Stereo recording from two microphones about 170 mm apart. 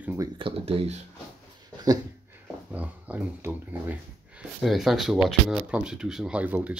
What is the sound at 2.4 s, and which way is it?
Speech, 10° right (ahead or behind).